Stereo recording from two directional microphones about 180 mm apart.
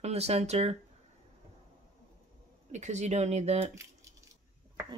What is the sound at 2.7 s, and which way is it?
Speech, 40° right (ahead or behind).